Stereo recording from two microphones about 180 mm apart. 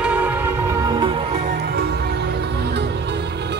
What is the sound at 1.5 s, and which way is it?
Music, 60° right (ahead or behind).